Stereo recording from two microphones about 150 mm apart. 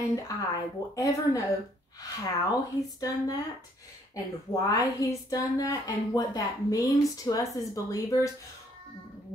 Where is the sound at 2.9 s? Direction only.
25° left (ahead or behind).